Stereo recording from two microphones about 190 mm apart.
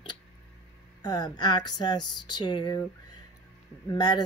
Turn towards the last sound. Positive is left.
turn(degrees=20)  # may be behind; listen again after turning